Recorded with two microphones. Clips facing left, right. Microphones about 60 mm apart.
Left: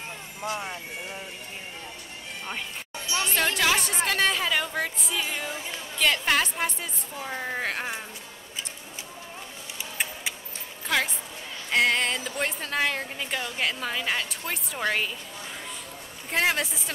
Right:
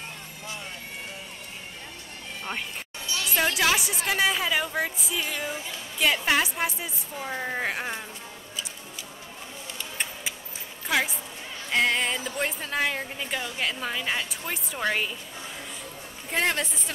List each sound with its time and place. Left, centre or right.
0.4 s speech: left
3.3 s a woman's voice: centre
10.9 s a woman's voice: centre
16.3 s a woman's voice: centre